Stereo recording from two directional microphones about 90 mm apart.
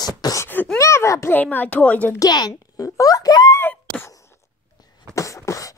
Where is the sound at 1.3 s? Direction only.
20° left (ahead or behind).